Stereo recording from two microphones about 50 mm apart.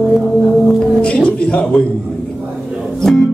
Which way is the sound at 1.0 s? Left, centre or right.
Left.